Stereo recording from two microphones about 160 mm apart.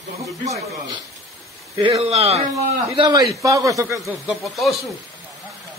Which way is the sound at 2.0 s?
40° right (ahead or behind).